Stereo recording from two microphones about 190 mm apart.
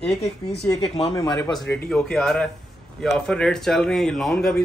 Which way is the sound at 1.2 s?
20° left (ahead or behind).